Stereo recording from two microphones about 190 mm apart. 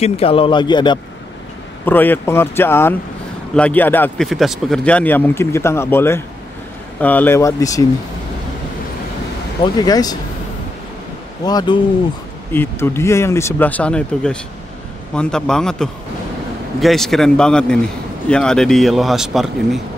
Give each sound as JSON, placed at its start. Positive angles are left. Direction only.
{"t": 0.0, "sound": "a man's voice", "side_deg": 30}
{"t": 1.9, "sound": "speech", "side_deg": 10}
{"t": 4.3, "sound": "speech", "side_deg": 0}
{"t": 9.8, "sound": "a man's voice", "side_deg": 20}
{"t": 11.4, "sound": "a man's voice", "side_deg": 25}
{"t": 12.5, "sound": "a man's voice", "side_deg": 10}